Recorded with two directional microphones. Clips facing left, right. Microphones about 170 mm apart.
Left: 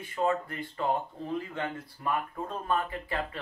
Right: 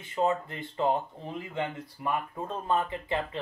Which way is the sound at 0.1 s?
25° right (ahead or behind).